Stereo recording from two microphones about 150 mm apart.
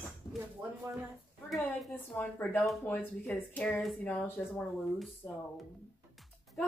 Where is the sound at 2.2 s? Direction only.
15° left (ahead or behind).